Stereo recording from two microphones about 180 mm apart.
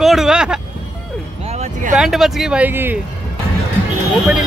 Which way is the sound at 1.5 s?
40° right (ahead or behind).